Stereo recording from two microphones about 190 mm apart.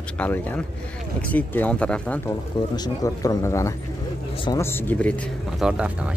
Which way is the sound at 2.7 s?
20° left (ahead or behind).